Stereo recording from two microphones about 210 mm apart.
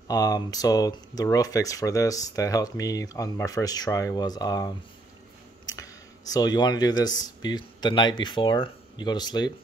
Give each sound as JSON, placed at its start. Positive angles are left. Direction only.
{"t": 0.1, "sound": "speech", "side_deg": 15}
{"t": 6.3, "sound": "speech", "side_deg": 20}